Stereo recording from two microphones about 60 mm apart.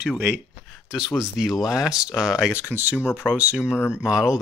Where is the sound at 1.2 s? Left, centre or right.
Centre.